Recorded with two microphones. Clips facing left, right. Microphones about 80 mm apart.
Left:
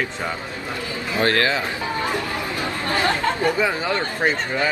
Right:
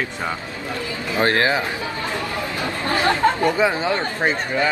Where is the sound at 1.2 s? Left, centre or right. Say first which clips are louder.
Right 1 dB; right.